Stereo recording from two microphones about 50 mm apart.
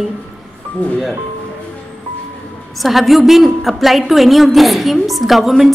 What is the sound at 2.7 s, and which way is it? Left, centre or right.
A woman's voice, centre.